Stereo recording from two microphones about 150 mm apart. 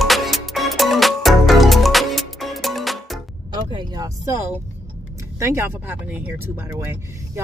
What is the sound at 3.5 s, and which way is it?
Vehicle, 30° right (ahead or behind).